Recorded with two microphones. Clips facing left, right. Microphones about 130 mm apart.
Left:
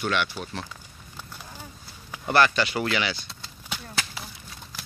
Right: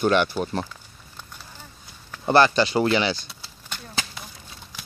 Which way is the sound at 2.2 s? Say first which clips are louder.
Right 4 dB; 30° right (ahead or behind).